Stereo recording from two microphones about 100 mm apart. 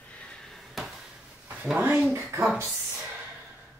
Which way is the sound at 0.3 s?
5° left (ahead or behind).